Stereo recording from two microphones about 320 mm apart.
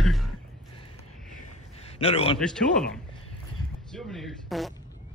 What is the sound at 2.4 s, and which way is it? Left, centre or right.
Speech, centre.